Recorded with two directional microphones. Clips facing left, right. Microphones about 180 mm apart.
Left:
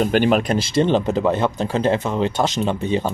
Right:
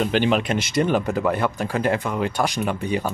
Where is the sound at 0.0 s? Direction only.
45° left (ahead or behind).